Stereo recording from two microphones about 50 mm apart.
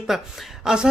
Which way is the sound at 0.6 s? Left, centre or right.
Centre.